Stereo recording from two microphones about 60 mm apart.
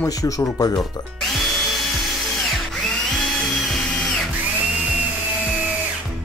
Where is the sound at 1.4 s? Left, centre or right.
Centre.